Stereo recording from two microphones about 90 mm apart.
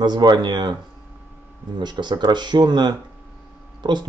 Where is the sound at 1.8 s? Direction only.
55° right (ahead or behind).